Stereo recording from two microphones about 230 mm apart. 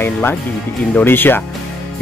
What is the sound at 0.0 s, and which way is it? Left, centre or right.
Speech, centre.